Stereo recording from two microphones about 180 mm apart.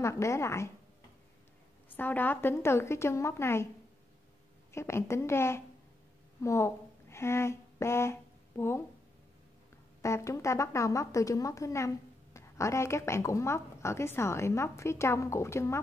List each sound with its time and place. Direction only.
0.0 s a woman's voice: 15° left (ahead or behind)
2.0 s a woman's voice: 10° left (ahead or behind)
4.7 s a woman's voice: 15° left (ahead or behind)
10.0 s a woman's voice: 15° left (ahead or behind)